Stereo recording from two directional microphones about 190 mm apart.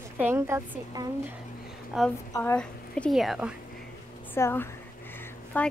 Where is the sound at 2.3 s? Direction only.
10° left (ahead or behind).